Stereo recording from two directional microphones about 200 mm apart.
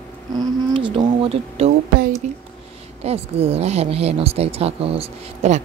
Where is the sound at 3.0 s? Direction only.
30° right (ahead or behind).